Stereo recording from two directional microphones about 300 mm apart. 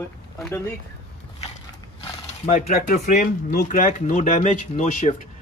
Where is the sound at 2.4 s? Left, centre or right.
Left.